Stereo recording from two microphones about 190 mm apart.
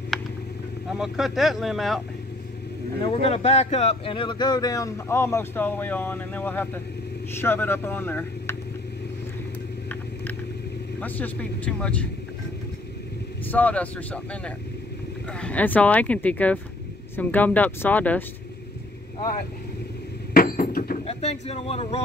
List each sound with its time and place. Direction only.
0.1 s vehicle: centre (ahead or behind)
0.9 s speech: centre (ahead or behind)
3.0 s speech: 30° left (ahead or behind); by 8.5 s 10° left (ahead or behind)
11.0 s speech: 10° left (ahead or behind)
13.5 s speech: 10° left (ahead or behind)
20.3 s a sound: 50° left (ahead or behind)
21.0 s speech: 35° left (ahead or behind)